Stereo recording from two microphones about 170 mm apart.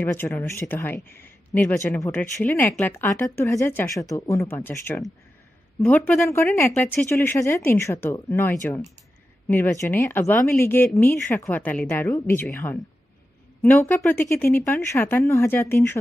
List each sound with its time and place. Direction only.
0.0 s speech: 10° left (ahead or behind)